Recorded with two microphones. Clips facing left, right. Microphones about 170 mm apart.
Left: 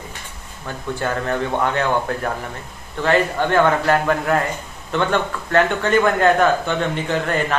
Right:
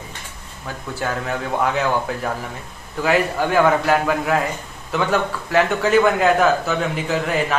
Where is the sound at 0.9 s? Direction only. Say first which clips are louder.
Left 2 dB; 5° right (ahead or behind).